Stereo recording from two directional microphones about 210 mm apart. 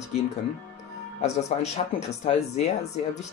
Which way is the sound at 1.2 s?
30° left (ahead or behind).